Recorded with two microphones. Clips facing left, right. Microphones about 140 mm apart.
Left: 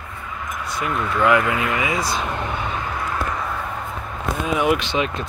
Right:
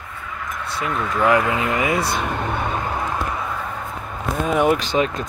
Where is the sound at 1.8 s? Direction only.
60° right (ahead or behind).